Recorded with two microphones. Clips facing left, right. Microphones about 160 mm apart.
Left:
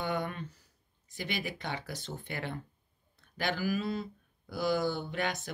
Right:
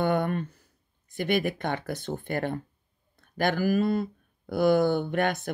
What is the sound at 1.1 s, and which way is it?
Speech, 55° right (ahead or behind).